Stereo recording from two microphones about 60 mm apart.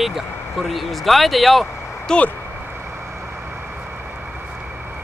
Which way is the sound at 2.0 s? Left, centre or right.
Left.